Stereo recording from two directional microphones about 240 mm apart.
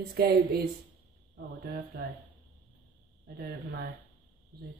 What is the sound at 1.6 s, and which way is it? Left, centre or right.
Speech, right.